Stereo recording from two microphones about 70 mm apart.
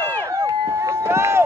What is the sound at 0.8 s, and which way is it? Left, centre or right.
Run, right.